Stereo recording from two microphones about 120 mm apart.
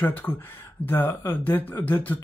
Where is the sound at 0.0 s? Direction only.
20° left (ahead or behind).